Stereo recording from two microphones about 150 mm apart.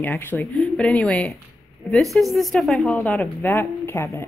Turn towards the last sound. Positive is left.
turn(degrees=15)  # may be behind; listen again after turning